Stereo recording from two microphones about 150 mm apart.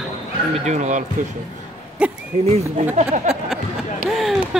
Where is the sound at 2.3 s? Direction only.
45° right (ahead or behind).